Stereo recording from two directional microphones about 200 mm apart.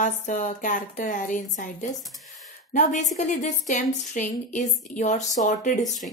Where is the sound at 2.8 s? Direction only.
40° left (ahead or behind).